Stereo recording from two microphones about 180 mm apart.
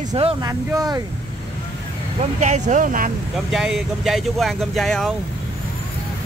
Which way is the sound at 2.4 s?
40° right (ahead or behind).